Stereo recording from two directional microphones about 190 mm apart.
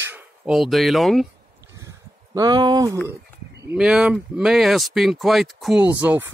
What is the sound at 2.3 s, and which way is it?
Speech, 20° right (ahead or behind).